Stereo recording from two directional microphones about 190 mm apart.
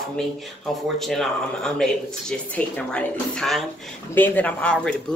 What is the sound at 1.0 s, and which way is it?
Speech, centre (ahead or behind).